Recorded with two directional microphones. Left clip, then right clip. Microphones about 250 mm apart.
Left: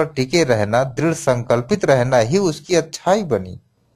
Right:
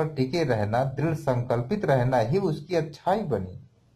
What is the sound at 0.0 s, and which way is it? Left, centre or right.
Speech, left.